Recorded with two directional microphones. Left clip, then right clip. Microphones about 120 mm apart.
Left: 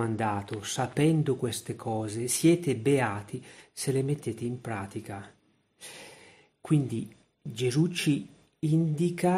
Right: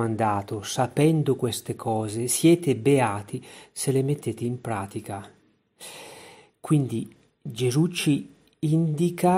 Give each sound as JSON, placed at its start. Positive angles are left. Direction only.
{"t": 0.0, "sound": "speech", "side_deg": -30}
{"t": 5.8, "sound": "snort", "side_deg": -40}
{"t": 7.5, "sound": "speech", "side_deg": -40}